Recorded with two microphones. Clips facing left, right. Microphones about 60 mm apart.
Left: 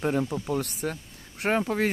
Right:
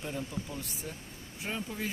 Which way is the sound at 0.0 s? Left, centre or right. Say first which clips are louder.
Left 11 dB; left.